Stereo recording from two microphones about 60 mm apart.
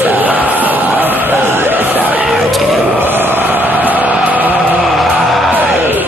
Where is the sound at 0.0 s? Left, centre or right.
Right.